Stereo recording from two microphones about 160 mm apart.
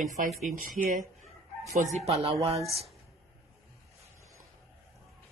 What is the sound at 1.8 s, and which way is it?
Speech, 45° right (ahead or behind).